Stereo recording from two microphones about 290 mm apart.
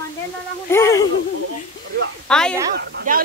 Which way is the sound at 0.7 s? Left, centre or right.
Centre.